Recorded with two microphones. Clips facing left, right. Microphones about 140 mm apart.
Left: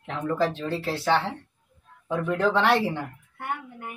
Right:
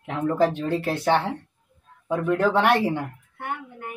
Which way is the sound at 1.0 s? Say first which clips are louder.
Right 2 dB; 15° right (ahead or behind).